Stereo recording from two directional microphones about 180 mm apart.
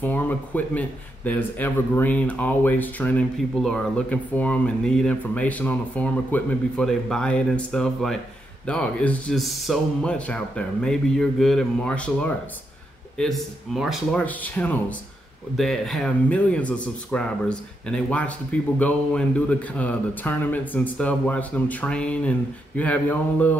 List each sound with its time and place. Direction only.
0.0 s speech: 10° left (ahead or behind)